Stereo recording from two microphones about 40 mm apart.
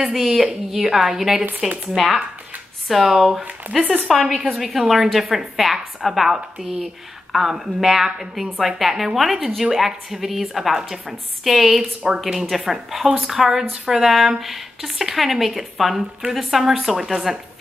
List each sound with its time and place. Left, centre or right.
0.1 s a woman's voice: centre
2.0 s a woman's voice: centre
3.1 s a woman's voice: centre